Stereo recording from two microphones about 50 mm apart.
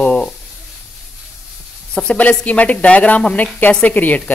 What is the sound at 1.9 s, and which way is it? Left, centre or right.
Speech, left.